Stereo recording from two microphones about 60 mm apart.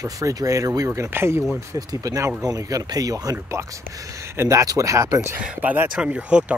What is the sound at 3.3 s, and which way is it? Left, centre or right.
Speech, right.